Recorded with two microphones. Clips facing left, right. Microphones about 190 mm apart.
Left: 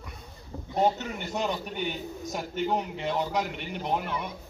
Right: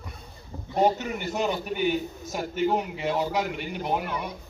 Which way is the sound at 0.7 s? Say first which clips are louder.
Right 3 dB; 15° right (ahead or behind).